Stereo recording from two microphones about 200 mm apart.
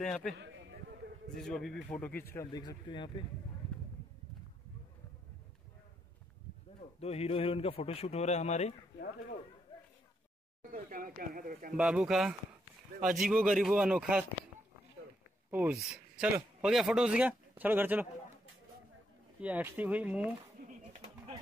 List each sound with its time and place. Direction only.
0.0 s speech: centre (ahead or behind)
0.4 s a sound: 70° right (ahead or behind)
1.3 s speech: centre (ahead or behind); by 3.3 s 25° left (ahead or behind)
7.0 s a man's voice: 30° left (ahead or behind)
9.7 s a sound: 20° left (ahead or behind)
10.7 s speech: 45° right (ahead or behind)
11.7 s speech: 5° right (ahead or behind)
15.5 s speech: 10° right (ahead or behind)
19.4 s speech: 10° right (ahead or behind)